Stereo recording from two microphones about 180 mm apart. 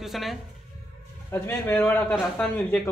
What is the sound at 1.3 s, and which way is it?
Speech, 15° left (ahead or behind).